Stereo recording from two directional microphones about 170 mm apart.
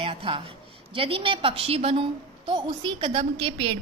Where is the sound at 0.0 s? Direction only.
30° right (ahead or behind).